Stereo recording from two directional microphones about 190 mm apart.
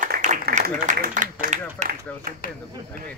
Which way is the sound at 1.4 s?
40° right (ahead or behind).